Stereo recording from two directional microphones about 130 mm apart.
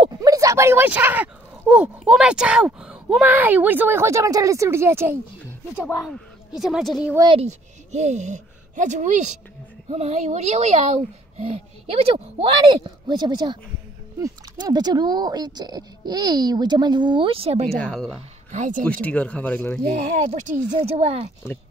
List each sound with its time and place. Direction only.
0.2 s speech: 25° right (ahead or behind)
6.0 s speech: centre (ahead or behind)
7.3 s speech: 60° right (ahead or behind)
17.7 s speech: 5° left (ahead or behind)
18.5 s speech: 80° right
19.0 s speech: 10° left (ahead or behind)
19.9 s speech: 80° right
20.8 s speech: 50° right (ahead or behind)